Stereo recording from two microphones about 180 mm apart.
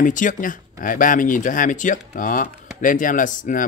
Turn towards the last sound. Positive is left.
turn(degrees=45)  # may be behind; listen again after turning